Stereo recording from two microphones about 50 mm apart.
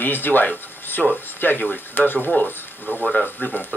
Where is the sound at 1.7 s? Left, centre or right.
Left.